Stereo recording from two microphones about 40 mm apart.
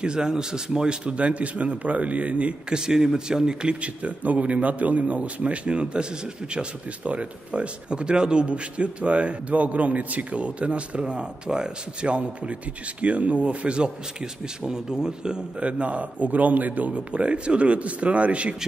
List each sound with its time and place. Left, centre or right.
0.0 s a man's voice: right
2.7 s speech: centre
4.0 s a man's voice: right; by 15.4 s centre
15.6 s a man's voice: right
16.9 s a man's voice: right